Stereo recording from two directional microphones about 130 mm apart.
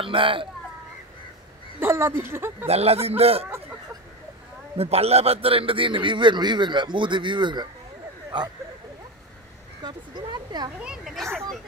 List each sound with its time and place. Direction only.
0.0 s speech: 40° right (ahead or behind)
1.8 s speech: 20° right (ahead or behind)
2.6 s speech: 50° right (ahead or behind)
4.7 s a man's voice: 50° right (ahead or behind)
9.8 s a man's voice: 35° right (ahead or behind)
10.8 s speech: 5° right (ahead or behind)